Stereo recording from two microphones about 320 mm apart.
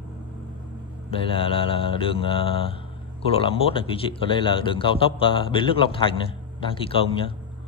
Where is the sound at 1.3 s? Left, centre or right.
Centre.